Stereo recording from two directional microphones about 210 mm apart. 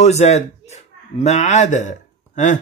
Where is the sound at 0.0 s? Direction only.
30° left (ahead or behind).